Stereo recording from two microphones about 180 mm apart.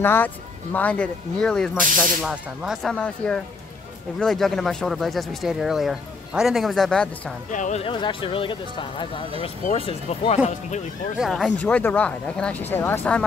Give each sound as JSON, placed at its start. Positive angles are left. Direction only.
{"t": 0.0, "sound": "speech", "side_deg": 10}
{"t": 7.5, "sound": "speech", "side_deg": 45}
{"t": 7.8, "sound": "speech", "side_deg": 25}
{"t": 11.1, "sound": "speech", "side_deg": 0}